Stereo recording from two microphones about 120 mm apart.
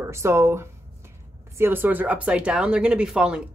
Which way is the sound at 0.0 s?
25° right (ahead or behind).